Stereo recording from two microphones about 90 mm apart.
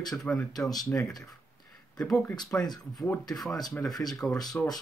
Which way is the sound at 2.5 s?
20° left (ahead or behind).